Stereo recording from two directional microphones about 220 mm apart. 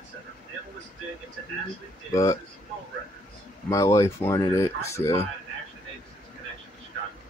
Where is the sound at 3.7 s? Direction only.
15° left (ahead or behind).